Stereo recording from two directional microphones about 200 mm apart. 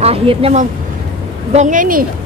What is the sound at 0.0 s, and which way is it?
Speech, 30° right (ahead or behind).